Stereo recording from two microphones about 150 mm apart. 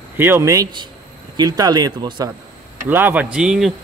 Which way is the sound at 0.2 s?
20° right (ahead or behind).